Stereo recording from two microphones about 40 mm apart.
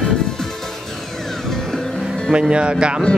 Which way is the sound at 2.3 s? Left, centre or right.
Right.